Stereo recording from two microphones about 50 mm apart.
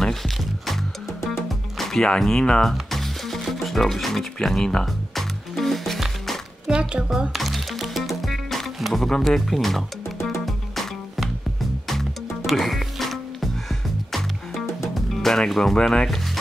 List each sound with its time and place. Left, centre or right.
1.8 s speech: centre
2.6 s music: centre
6.7 s a sound: centre
7.3 s music: centre
9.2 s speech: centre
10.4 s music: centre
12.4 s music: centre